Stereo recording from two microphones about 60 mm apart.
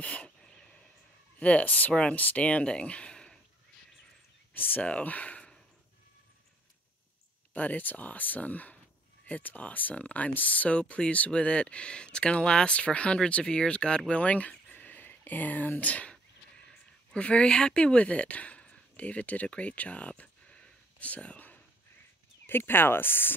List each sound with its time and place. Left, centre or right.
0.0 s a sound: left
1.4 s speech: left
4.6 s speech: left
7.5 s speech: left
22.5 s speech: left